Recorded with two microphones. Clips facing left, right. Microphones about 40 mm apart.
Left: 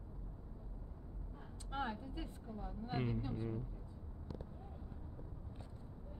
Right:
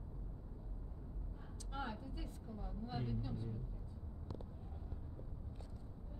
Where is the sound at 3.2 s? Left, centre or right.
Left.